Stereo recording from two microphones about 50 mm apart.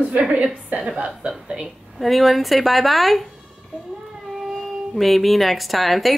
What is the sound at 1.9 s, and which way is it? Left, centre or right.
Speech, centre.